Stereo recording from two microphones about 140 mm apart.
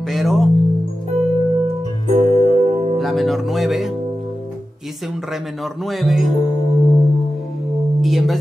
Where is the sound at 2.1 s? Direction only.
50° right (ahead or behind).